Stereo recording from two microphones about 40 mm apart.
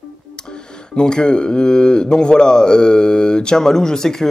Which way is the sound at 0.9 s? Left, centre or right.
Left.